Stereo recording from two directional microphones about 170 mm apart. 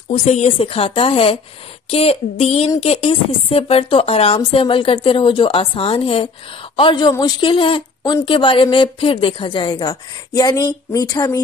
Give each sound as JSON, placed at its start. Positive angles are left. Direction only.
{"t": 0.1, "sound": "a woman's voice", "side_deg": 35}